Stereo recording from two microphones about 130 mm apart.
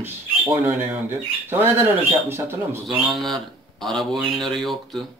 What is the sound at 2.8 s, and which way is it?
A man's voice, centre (ahead or behind).